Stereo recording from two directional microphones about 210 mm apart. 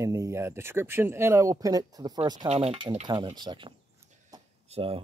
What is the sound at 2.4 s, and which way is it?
Speech, 30° right (ahead or behind).